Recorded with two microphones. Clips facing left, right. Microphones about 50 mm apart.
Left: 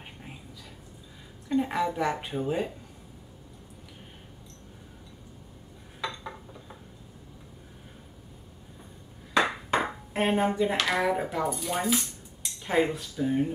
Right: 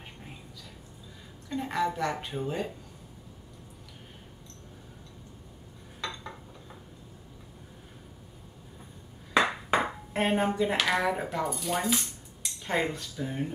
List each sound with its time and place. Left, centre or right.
1.5 s speech: centre
5.9 s dishes: centre
9.4 s ping: centre
9.8 s speech: centre